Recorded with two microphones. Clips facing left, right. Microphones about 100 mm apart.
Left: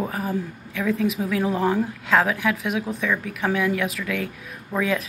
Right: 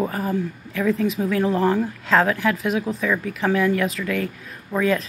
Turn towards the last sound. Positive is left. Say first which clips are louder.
# right 3 dB
turn(degrees=0)  # may be behind; listen again after turning